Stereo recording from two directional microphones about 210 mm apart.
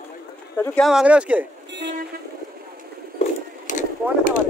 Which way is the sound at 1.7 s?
55° right (ahead or behind).